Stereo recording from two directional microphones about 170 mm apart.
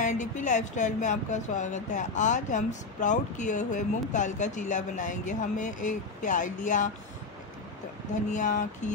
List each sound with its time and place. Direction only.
0.0 s speech: 45° left (ahead or behind)
8.3 s speech: 50° left (ahead or behind)